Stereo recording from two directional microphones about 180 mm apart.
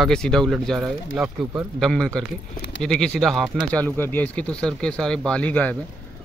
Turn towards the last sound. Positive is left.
turn(degrees=5)  # may be behind; listen again after turning